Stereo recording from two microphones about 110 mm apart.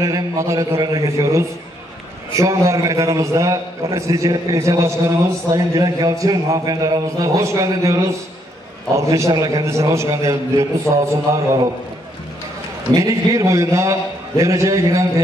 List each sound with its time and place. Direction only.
0.0 s a man's voice: 30° right (ahead or behind)
12.9 s a man's voice: 30° right (ahead or behind)